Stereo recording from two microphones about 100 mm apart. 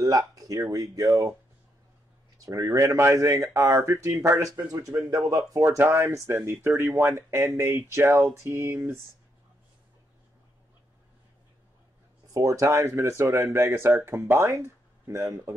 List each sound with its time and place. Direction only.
0.0 s speech: 35° right (ahead or behind)
2.3 s speech: 35° right (ahead or behind)
12.4 s speech: 35° right (ahead or behind)